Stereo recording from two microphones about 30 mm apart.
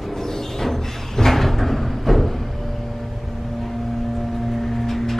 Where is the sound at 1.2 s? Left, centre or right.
Centre.